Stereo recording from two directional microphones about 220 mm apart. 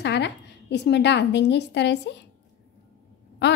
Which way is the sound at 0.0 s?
50° left (ahead or behind).